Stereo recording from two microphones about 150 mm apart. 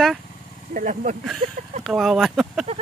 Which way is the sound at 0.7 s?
55° right (ahead or behind).